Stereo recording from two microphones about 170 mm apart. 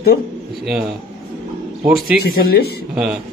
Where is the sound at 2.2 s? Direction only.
65° left (ahead or behind).